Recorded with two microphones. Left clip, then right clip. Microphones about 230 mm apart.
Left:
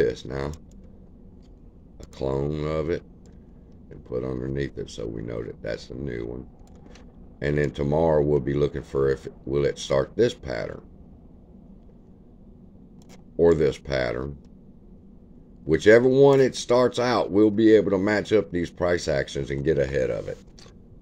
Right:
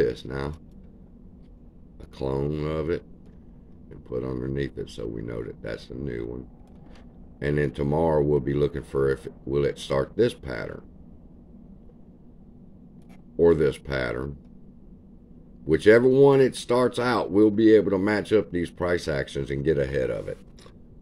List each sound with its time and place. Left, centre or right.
0.0 s speech: centre
2.1 s speech: centre
7.3 s speech: centre
13.4 s speech: centre
15.6 s speech: centre